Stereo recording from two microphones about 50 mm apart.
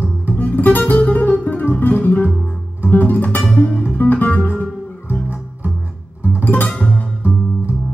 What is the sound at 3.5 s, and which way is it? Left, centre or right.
Guitar, left.